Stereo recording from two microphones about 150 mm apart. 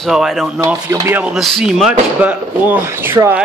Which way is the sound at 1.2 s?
Centre (ahead or behind).